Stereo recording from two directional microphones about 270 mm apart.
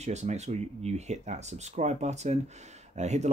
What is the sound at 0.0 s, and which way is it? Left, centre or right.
Speech, right.